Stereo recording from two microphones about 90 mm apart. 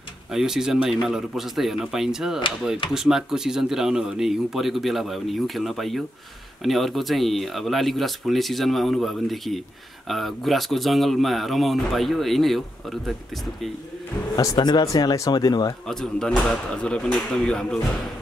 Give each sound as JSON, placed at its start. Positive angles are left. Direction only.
{"t": 0.3, "sound": "speech", "side_deg": -5}
{"t": 14.3, "sound": "speech", "side_deg": 40}
{"t": 15.9, "sound": "speech", "side_deg": 5}